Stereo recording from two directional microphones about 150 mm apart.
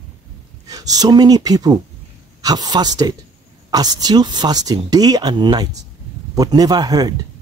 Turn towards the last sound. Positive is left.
turn(degrees=-25)  # may be behind; listen again after turning